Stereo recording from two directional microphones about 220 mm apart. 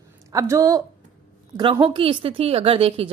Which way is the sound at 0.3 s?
15° right (ahead or behind).